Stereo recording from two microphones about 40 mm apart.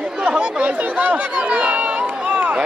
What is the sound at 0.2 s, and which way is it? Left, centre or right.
Chatter, right.